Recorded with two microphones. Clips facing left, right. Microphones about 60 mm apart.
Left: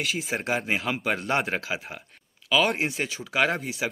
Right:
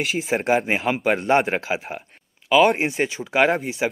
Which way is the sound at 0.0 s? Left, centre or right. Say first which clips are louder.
Right 6 dB; right.